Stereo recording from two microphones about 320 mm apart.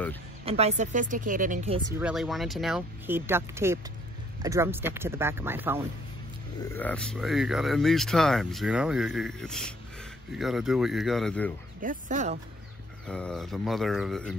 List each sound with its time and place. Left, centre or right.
0.5 s speech: centre
1.9 s speech: centre
6.7 s speech: centre
11.8 s speech: right
13.0 s speech: centre